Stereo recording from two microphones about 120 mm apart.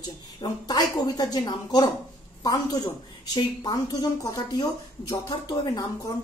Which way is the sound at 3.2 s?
35° left (ahead or behind).